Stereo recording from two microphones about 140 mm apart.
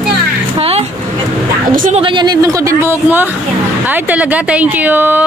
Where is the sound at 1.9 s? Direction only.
35° right (ahead or behind); by 5.3 s 15° right (ahead or behind).